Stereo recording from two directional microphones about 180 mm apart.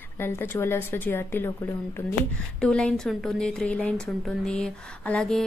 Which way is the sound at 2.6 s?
5° left (ahead or behind).